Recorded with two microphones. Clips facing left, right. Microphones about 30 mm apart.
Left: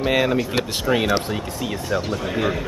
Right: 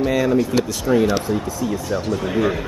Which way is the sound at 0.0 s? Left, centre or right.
Left.